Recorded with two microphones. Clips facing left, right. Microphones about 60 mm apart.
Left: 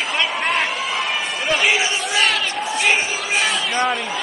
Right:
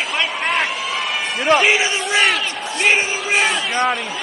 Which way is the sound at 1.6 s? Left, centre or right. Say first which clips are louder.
Right 2 dB; right.